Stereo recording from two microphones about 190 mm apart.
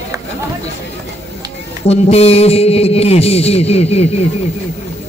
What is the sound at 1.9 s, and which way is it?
A man's voice, 35° left (ahead or behind).